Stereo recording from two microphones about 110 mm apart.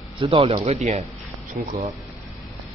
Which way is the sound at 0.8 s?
90° right.